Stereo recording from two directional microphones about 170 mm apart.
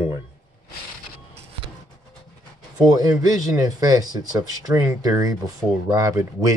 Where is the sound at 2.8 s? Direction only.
20° right (ahead or behind).